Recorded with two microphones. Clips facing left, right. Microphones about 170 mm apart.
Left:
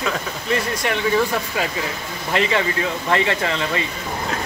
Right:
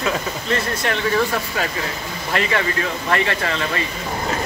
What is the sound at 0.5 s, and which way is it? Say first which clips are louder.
Speech: left 1 dB; 10° left (ahead or behind).